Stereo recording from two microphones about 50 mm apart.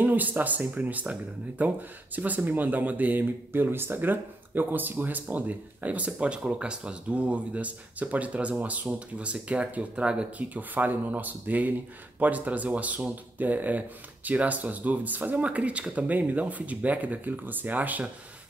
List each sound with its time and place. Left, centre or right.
0.0 s speech: right
10.3 s speech: right